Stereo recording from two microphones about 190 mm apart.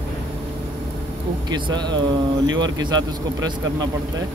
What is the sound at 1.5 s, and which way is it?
Speech, 25° right (ahead or behind).